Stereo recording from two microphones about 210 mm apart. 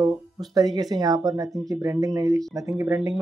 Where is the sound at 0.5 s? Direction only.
20° right (ahead or behind).